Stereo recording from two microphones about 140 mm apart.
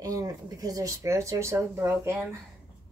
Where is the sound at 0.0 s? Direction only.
25° right (ahead or behind).